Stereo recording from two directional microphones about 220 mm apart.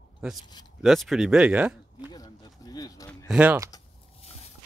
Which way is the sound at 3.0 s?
5° right (ahead or behind).